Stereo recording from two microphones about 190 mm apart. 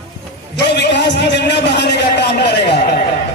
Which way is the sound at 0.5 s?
65° left (ahead or behind).